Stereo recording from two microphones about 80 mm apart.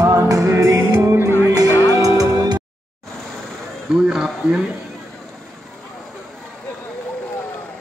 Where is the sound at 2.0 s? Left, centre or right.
Right.